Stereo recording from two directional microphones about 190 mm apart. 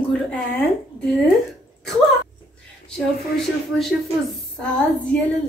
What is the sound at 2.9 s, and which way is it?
Speech, centre (ahead or behind).